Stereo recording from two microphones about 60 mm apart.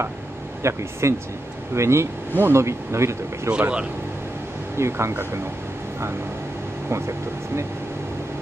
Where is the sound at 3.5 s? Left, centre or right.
Centre.